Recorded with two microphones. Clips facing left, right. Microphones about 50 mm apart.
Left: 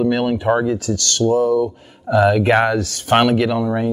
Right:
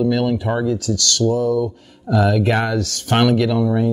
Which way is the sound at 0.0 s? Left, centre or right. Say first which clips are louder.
Left 1 dB; left.